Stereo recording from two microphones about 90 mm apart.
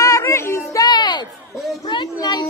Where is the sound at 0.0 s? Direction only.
35° left (ahead or behind).